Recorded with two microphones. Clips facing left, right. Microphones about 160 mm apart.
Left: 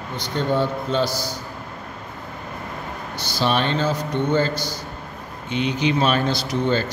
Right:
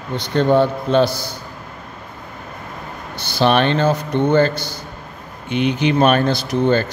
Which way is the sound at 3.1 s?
60° right (ahead or behind).